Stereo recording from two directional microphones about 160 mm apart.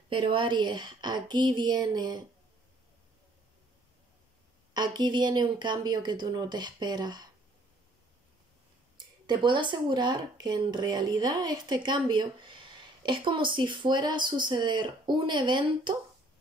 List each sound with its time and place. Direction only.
0.1 s speech: 35° right (ahead or behind)
4.7 s speech: 25° right (ahead or behind)
9.2 s speech: 30° right (ahead or behind)